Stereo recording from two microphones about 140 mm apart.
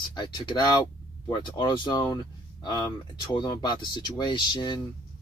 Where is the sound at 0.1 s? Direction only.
30° left (ahead or behind).